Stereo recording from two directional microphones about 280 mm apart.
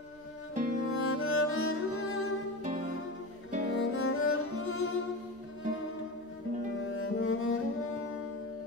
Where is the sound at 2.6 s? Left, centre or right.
Right.